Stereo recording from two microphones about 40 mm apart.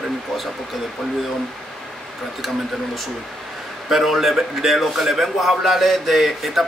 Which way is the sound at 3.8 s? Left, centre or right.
Centre.